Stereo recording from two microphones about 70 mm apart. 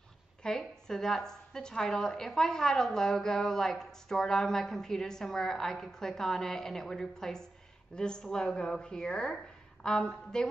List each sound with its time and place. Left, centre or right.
0.4 s a woman's voice: centre